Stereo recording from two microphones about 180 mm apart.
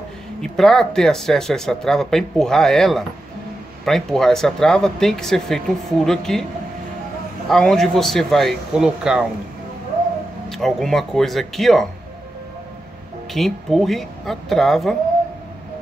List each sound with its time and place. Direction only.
0.4 s speech: centre (ahead or behind)
7.4 s speech: 5° left (ahead or behind)
10.5 s speech: centre (ahead or behind)
13.3 s speech: centre (ahead or behind)